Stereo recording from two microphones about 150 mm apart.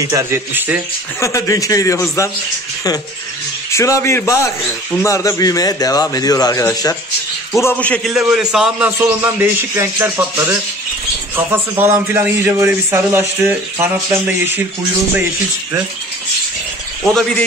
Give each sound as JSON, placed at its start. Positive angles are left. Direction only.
{"t": 0.1, "sound": "a man's voice", "side_deg": -15}
{"t": 1.2, "sound": "a man's voice", "side_deg": 20}
{"t": 3.7, "sound": "a man's voice", "side_deg": 20}
{"t": 7.5, "sound": "a man's voice", "side_deg": 15}
{"t": 8.1, "sound": "a man's voice", "side_deg": -5}
{"t": 11.8, "sound": "a man's voice", "side_deg": -15}
{"t": 17.0, "sound": "speech", "side_deg": 0}